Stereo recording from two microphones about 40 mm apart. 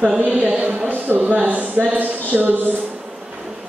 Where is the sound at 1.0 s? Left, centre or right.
Right.